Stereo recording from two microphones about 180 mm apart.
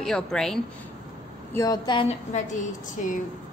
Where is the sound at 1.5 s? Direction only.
20° left (ahead or behind).